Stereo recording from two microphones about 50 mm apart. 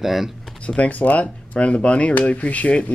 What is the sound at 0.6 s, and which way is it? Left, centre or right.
Speech, left.